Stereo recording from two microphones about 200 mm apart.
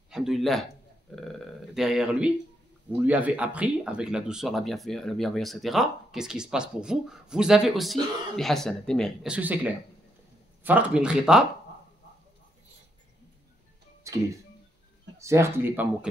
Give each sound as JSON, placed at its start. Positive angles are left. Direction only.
{"t": 0.1, "sound": "a man's voice", "side_deg": 0}
{"t": 14.0, "sound": "speech", "side_deg": -15}